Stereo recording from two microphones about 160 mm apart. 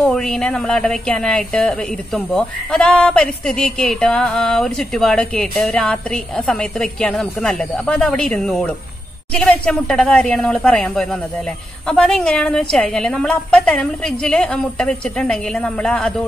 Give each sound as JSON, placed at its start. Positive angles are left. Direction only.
{"t": 0.0, "sound": "speech", "side_deg": 5}